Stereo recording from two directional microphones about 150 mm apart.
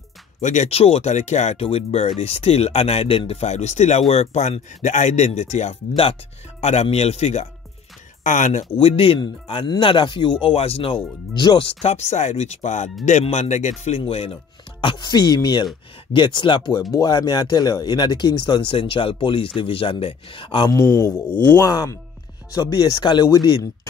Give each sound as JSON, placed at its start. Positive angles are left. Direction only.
{"t": 0.4, "sound": "speech", "side_deg": 50}
{"t": 8.7, "sound": "speech", "side_deg": 40}
{"t": 20.8, "sound": "speech", "side_deg": 20}